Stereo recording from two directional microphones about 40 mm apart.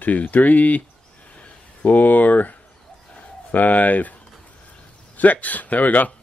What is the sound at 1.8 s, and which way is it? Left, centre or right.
Speech, left.